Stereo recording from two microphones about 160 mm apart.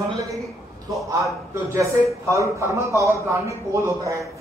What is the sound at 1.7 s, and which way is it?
A man's voice, 20° right (ahead or behind).